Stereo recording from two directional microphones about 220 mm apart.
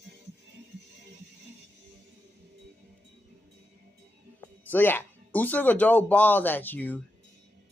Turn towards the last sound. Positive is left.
turn(degrees=5)  # may be behind; listen again after turning